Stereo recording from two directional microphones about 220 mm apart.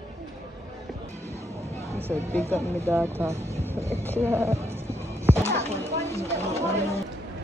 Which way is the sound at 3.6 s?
10° right (ahead or behind).